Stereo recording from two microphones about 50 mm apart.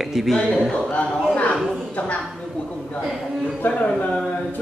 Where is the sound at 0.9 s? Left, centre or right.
Left.